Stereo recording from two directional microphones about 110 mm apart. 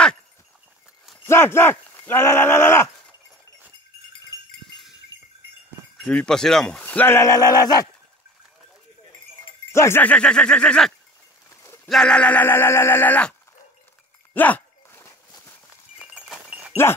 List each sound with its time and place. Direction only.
1.2 s speech: 25° left (ahead or behind)
5.1 s a sound: 35° left (ahead or behind)
6.0 s speech: 10° left (ahead or behind); by 7.9 s 35° left (ahead or behind)
9.7 s speech: 25° left (ahead or behind)
11.6 s clip-clop: 25° left (ahead or behind)
11.9 s speech: 5° left (ahead or behind)
14.3 s a sound: 15° left (ahead or behind)
16.0 s horse: 5° right (ahead or behind)